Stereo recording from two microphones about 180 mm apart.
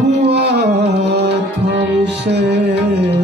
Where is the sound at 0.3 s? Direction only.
70° right (ahead or behind).